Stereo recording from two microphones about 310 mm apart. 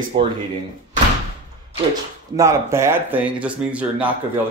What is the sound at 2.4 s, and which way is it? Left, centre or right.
Speech, centre.